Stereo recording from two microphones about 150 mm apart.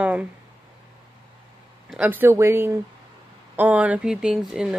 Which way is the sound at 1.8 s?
10° right (ahead or behind).